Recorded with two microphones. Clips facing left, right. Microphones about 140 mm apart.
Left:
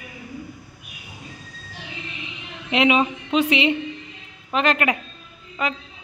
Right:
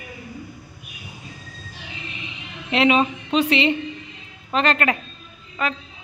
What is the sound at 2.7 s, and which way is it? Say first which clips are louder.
A man's voice: right 1 dB; 15° left (ahead or behind).